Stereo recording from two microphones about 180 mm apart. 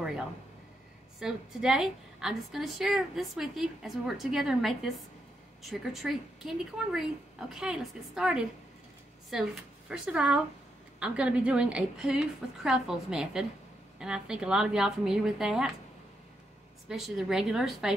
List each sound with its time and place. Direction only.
1.2 s a woman's voice: 5° right (ahead or behind)
16.9 s a woman's voice: centre (ahead or behind)